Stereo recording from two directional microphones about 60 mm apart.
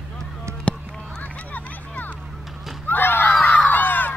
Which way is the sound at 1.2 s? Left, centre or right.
Left.